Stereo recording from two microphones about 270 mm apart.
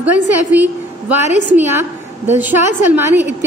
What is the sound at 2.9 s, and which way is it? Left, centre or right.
Speech, centre.